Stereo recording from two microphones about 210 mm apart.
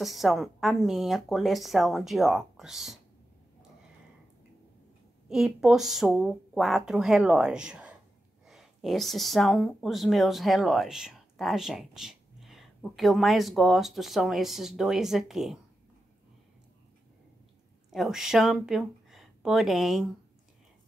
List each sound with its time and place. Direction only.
0.0 s speech: centre (ahead or behind)
5.3 s speech: centre (ahead or behind)
17.9 s speech: centre (ahead or behind)